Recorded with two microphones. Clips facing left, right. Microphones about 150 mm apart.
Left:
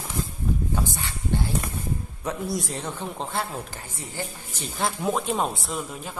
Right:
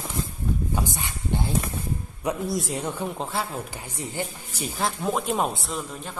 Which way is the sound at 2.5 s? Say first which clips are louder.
Right 1 dB; centre (ahead or behind).